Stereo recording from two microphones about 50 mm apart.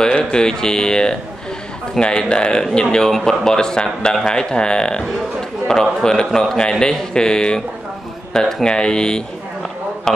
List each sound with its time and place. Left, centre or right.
0.0 s speech: centre